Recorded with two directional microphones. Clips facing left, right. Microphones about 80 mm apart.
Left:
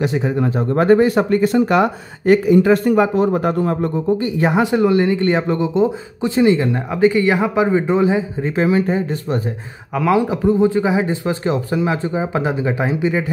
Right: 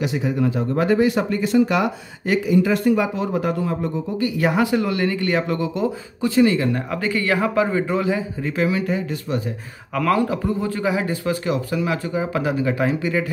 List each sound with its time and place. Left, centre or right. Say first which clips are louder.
0.0 s speech: left 3 dB; left
4.2 s speech: left 3 dB; left
9.9 s speech: left 3 dB; centre